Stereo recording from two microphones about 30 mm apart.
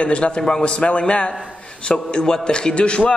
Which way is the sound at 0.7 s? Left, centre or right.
Left.